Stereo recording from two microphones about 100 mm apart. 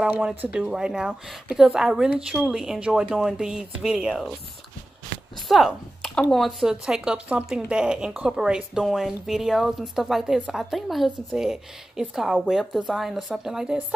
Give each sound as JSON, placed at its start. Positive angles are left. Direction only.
{"t": 0.0, "sound": "speech", "side_deg": -10}
{"t": 5.5, "sound": "speech", "side_deg": 0}